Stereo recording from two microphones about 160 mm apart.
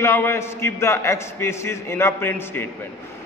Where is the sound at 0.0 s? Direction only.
15° left (ahead or behind).